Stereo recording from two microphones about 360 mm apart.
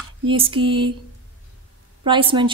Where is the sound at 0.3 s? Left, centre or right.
Centre.